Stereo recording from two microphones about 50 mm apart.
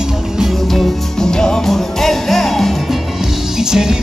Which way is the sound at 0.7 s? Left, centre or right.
Centre.